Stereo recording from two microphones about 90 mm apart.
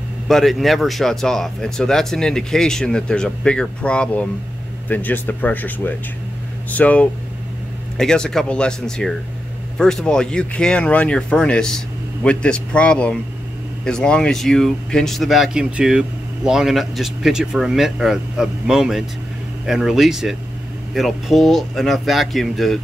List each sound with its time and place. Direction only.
0.3 s speech: centre (ahead or behind)